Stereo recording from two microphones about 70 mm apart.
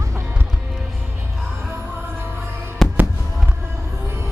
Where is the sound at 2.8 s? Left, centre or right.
Centre.